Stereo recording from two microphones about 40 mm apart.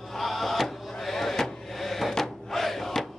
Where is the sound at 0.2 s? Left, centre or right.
Centre.